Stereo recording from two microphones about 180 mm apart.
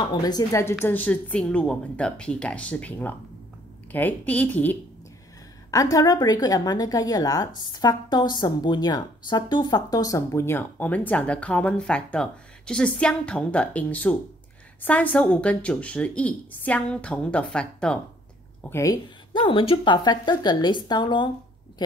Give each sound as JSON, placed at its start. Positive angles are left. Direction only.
{"t": 0.1, "sound": "speech", "side_deg": 20}
{"t": 5.7, "sound": "a woman's voice", "side_deg": 20}
{"t": 19.3, "sound": "a woman's voice", "side_deg": 30}